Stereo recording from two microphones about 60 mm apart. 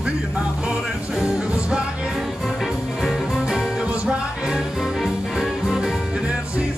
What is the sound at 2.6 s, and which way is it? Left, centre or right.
Music, centre.